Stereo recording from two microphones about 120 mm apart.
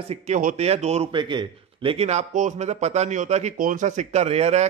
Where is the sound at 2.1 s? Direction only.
80° right.